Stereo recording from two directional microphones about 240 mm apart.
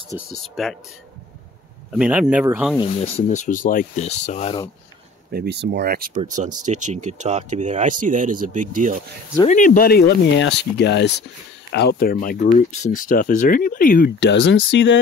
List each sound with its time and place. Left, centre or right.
0.3 s speech: centre
1.9 s speech: centre
2.8 s speech: left
5.3 s speech: right
9.5 s speech: left